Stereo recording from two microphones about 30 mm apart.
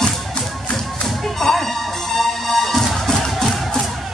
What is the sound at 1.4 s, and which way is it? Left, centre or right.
Music, centre.